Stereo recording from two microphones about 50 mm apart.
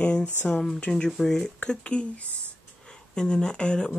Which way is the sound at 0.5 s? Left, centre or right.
Centre.